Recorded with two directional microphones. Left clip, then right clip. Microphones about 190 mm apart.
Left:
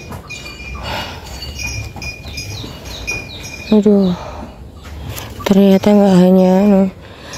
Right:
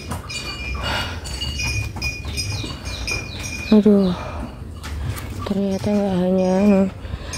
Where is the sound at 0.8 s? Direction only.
5° left (ahead or behind).